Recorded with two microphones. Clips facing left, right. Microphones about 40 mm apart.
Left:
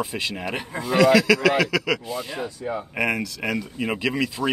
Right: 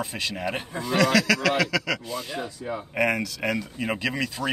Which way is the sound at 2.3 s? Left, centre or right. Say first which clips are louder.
Left 3 dB; left.